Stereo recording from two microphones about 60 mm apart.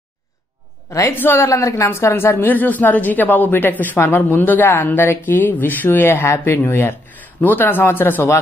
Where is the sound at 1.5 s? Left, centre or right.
Left.